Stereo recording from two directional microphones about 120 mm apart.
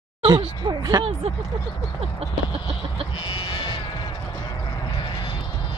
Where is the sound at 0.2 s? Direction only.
40° right (ahead or behind).